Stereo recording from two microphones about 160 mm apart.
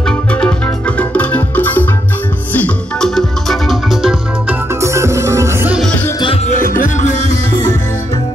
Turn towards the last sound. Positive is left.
turn(degrees=20)  # may be behind; listen again after turning